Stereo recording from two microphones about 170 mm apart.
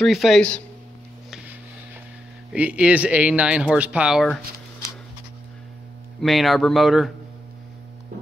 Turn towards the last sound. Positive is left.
turn(degrees=0)  # may be behind; listen again after turning